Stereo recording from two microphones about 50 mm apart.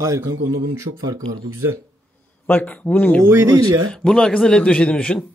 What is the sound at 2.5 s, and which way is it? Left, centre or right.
Speech, left.